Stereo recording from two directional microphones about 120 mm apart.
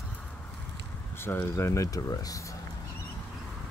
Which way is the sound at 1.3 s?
20° left (ahead or behind).